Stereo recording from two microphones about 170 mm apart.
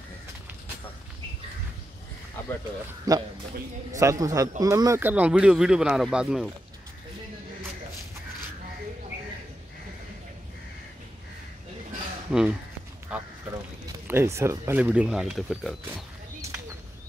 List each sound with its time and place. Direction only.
3.1 s a man's voice: 20° right (ahead or behind); by 6.5 s centre (ahead or behind)
12.3 s speech: 5° right (ahead or behind)
13.1 s a sound: 5° right (ahead or behind)
14.0 s speech: 15° right (ahead or behind)